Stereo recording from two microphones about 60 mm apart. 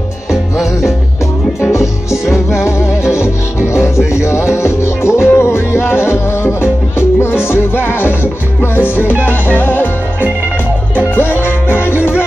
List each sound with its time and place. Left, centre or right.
0.3 s music: centre
1.7 s music: left
3.6 s music: left
11.1 s music: left